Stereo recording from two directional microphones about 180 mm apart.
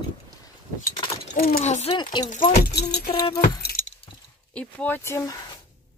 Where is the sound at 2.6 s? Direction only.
65° left (ahead or behind).